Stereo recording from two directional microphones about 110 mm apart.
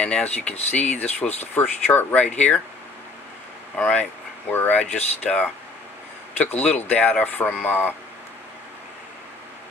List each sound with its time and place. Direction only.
0.0 s speech: 10° left (ahead or behind)
0.6 s speech: 90° left
0.9 s speech: 15° left (ahead or behind)
3.7 s speech: 15° left (ahead or behind)
5.2 s speech: 5° left (ahead or behind)